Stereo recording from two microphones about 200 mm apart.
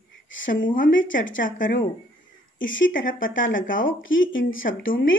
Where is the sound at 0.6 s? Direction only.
40° left (ahead or behind).